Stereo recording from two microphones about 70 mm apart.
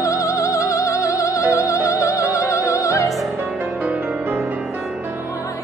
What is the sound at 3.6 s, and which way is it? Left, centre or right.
Music, right.